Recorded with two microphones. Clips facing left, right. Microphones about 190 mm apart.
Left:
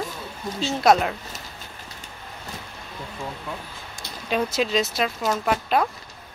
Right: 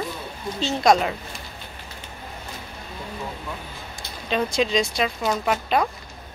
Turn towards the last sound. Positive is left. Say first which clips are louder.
# even
turn(degrees=0)  # may be behind; listen again after turning